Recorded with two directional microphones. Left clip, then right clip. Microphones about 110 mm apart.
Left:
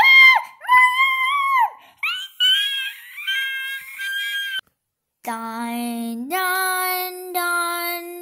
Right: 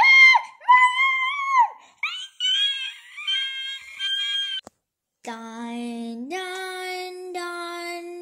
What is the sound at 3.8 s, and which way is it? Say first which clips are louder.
Music: even; 40° left (ahead or behind).